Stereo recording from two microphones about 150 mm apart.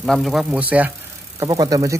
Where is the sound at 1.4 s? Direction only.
25° right (ahead or behind).